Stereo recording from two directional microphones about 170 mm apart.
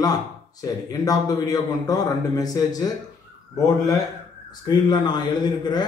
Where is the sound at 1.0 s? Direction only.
20° left (ahead or behind).